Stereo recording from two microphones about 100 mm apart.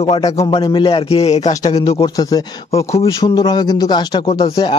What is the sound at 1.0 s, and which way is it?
Speech, 90° left.